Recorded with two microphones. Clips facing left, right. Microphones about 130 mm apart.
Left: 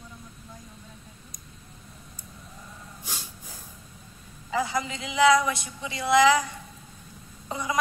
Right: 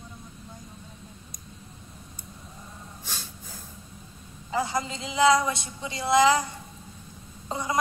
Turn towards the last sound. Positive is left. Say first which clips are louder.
# right 1 dB
turn(degrees=-30)  # may be behind; listen again after turning